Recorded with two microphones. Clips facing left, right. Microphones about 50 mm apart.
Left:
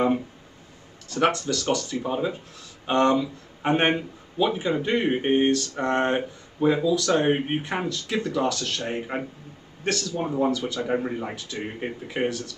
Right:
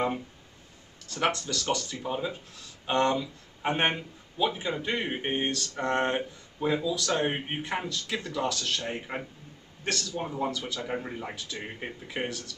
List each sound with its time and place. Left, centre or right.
1.1 s speech: centre
2.0 s speech: centre
8.8 s speech: centre
9.8 s speech: centre
10.2 s speech: centre
10.5 s speech: centre
10.8 s speech: centre